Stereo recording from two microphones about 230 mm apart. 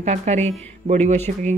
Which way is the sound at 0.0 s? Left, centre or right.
Right.